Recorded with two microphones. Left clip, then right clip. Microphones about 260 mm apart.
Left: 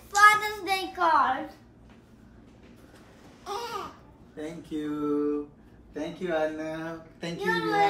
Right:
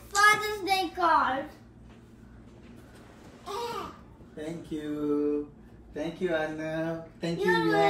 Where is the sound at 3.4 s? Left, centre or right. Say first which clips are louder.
Even; left.